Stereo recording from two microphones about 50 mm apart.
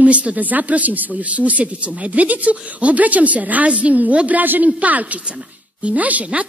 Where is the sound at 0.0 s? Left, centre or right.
Right.